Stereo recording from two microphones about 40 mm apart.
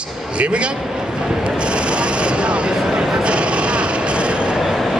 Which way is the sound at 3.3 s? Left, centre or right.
Right.